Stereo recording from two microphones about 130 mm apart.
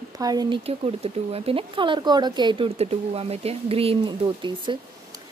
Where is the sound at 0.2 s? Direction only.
30° right (ahead or behind).